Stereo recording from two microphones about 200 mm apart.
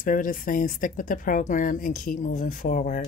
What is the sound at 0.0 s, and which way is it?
Speech, 45° left (ahead or behind).